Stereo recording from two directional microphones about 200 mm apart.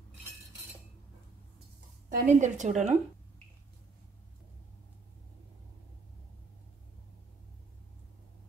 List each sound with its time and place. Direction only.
2.0 s a woman's voice: 40° right (ahead or behind)